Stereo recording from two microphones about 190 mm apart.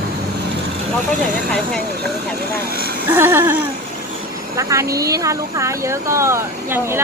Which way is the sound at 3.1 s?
10° right (ahead or behind).